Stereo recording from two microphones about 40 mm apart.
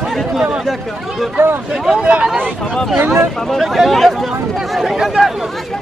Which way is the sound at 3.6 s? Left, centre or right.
Centre.